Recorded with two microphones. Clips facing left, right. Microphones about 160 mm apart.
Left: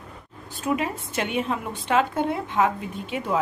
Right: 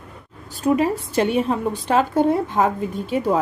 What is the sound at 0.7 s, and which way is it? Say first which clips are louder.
A woman's voice: right 7 dB; 35° right (ahead or behind).